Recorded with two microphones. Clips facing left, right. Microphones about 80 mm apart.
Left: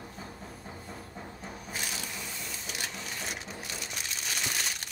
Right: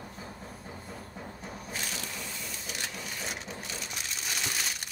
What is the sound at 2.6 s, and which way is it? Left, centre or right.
Crushing, centre.